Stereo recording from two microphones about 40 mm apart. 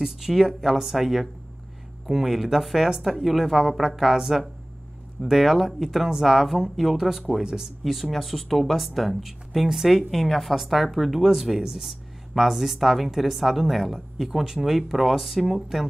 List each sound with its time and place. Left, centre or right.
0.0 s speech: centre
7.8 s speech: centre